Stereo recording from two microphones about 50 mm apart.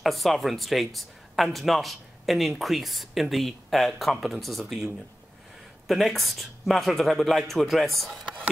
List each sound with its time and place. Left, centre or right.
0.0 s speech: centre